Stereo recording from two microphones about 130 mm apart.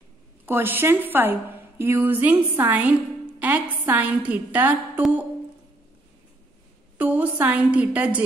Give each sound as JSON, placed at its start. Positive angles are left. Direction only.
{"t": 0.5, "sound": "a woman's voice", "side_deg": -15}
{"t": 7.0, "sound": "a woman's voice", "side_deg": -10}